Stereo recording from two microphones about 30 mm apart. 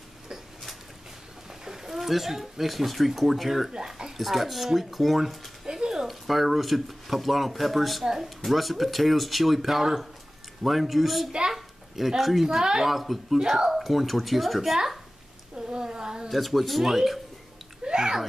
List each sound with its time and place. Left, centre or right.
1.6 s speech: centre
3.7 s speech: right
4.2 s speech: centre
5.7 s music: right
6.0 s speech: centre
8.0 s speech: centre
8.5 s speech: centre
11.5 s a sound: centre
12.2 s speech: centre
12.4 s a woman's voice: right
12.8 s speech: centre
15.5 s a sound: right
16.3 s speech: centre
17.8 s bathtub: right